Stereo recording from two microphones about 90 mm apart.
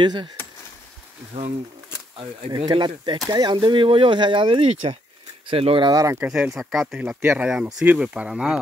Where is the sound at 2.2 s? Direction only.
60° right (ahead or behind); by 5.9 s 85° right.